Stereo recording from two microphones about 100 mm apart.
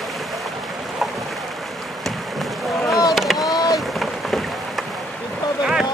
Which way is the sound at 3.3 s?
40° left (ahead or behind).